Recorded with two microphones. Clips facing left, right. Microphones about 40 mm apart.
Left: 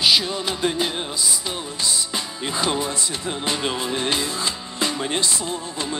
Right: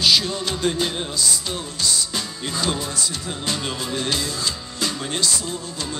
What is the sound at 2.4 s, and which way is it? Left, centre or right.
Speech, left.